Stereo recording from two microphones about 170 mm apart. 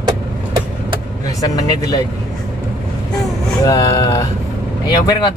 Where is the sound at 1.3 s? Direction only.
20° left (ahead or behind).